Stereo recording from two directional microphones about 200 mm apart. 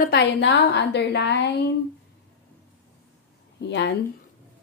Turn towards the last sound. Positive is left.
turn(degrees=60)  # may be behind; listen again after turning